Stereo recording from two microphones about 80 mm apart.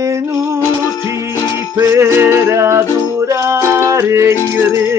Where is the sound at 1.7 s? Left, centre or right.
Right.